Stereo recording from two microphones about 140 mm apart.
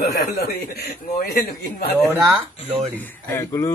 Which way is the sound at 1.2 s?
90° left.